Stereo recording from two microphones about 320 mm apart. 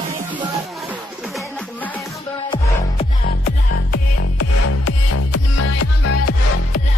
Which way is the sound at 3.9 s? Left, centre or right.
Left.